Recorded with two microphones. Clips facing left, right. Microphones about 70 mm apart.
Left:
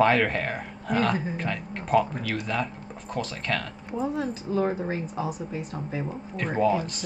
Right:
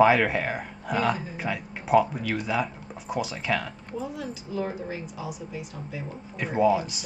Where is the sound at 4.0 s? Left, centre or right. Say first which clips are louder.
Left 6 dB; left.